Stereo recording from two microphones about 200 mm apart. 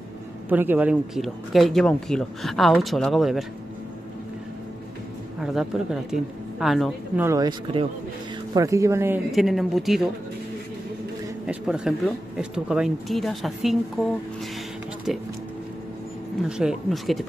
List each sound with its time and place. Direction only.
0.5 s speech: 10° right (ahead or behind)
5.4 s speech: 5° right (ahead or behind)
7.2 s speech: 20° right (ahead or behind)
9.3 s speech: centre (ahead or behind)
11.4 s speech: 5° right (ahead or behind)
15.1 s speech: centre (ahead or behind)
16.4 s speech: 5° right (ahead or behind)